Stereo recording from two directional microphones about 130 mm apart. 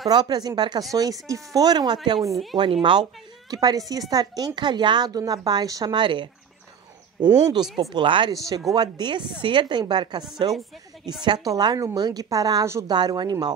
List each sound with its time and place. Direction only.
0.1 s a woman's voice: 35° right (ahead or behind)